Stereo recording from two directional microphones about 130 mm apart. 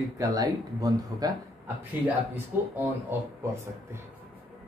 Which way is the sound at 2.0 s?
15° right (ahead or behind).